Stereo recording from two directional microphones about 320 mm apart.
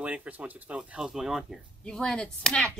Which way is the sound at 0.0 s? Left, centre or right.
Centre.